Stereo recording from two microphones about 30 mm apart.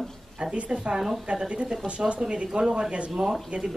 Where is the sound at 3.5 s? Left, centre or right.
Right.